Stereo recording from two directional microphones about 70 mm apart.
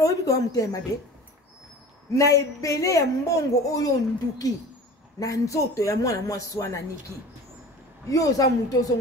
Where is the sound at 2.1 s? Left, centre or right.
Left.